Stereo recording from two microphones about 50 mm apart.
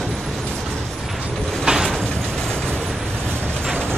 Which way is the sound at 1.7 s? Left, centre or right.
Centre.